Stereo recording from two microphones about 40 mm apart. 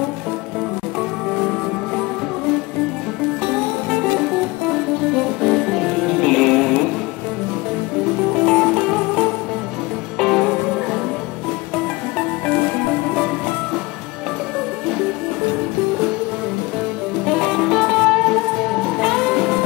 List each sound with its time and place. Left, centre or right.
1.3 s music: centre
3.5 s music: centre
8.2 s music: centre
17.3 s music: centre